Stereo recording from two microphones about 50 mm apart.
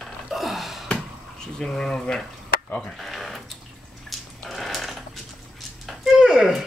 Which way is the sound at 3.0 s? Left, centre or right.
Centre.